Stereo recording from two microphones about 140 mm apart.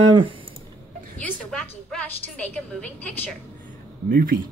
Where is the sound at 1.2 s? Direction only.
5° left (ahead or behind).